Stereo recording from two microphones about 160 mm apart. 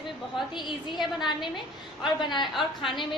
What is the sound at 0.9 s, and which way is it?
Speech, centre (ahead or behind).